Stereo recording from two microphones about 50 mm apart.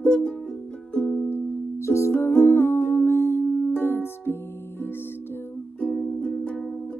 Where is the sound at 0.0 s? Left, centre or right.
Left.